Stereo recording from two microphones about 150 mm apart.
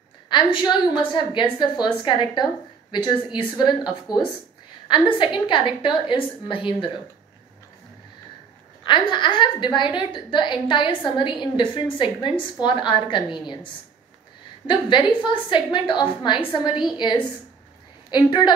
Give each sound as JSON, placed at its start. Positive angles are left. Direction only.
{"t": 0.3, "sound": "a woman's voice", "side_deg": 35}
{"t": 8.8, "sound": "a woman's voice", "side_deg": 30}
{"t": 14.7, "sound": "a woman's voice", "side_deg": 30}